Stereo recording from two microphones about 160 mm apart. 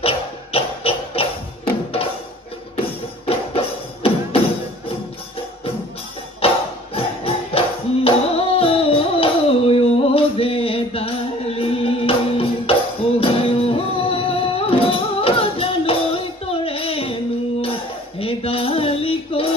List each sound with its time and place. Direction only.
0.0 s music: 35° left (ahead or behind)
3.3 s music: 35° left (ahead or behind)
6.4 s tambourine: 35° left (ahead or behind)
7.2 s music: 40° left (ahead or behind)